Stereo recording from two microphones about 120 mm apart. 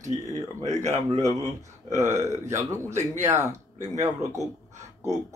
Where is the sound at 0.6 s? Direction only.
75° right (ahead or behind).